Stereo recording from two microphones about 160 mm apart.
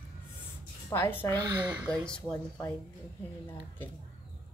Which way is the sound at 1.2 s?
25° right (ahead or behind).